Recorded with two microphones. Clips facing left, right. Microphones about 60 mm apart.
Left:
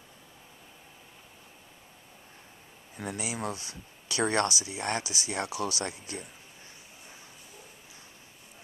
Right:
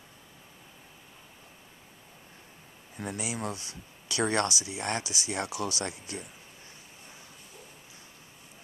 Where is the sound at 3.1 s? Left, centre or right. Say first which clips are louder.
Even; centre.